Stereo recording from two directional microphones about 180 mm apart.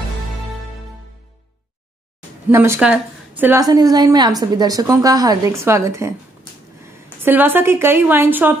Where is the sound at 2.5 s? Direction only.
15° right (ahead or behind).